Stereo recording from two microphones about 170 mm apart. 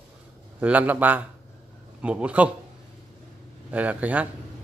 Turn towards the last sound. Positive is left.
turn(degrees=-10)  # may be behind; listen again after turning